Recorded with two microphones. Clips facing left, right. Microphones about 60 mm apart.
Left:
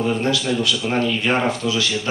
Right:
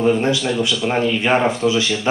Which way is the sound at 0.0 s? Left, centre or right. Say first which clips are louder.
Right 4 dB; right.